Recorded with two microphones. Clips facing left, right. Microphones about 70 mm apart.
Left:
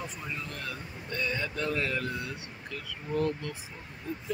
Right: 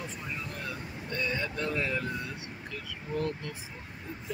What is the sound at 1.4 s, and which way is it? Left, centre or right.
Speech, centre.